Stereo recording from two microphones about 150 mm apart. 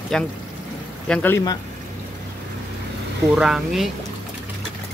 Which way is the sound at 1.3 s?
25° left (ahead or behind).